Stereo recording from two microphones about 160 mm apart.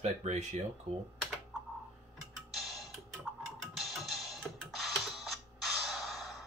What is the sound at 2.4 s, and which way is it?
Music, centre (ahead or behind).